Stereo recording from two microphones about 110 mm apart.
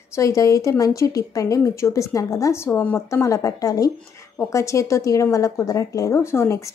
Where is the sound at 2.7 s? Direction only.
15° left (ahead or behind).